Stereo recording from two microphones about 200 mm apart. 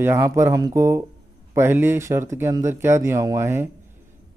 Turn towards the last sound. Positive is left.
turn(degrees=-15)  # may be behind; listen again after turning